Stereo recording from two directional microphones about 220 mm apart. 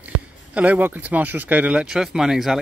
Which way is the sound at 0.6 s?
5° right (ahead or behind).